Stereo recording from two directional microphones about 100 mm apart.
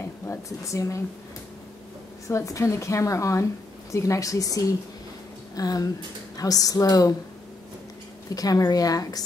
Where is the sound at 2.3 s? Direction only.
30° left (ahead or behind).